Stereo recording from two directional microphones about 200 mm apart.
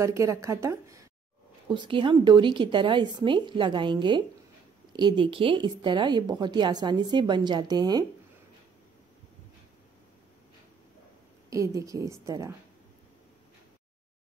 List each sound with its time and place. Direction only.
0.0 s a woman's voice: 15° right (ahead or behind)
11.5 s a woman's voice: 15° right (ahead or behind)